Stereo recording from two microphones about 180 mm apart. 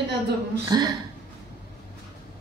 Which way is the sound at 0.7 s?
20° right (ahead or behind).